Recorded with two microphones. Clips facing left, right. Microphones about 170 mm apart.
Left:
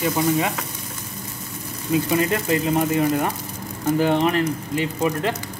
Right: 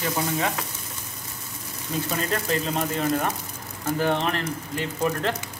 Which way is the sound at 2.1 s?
15° left (ahead or behind).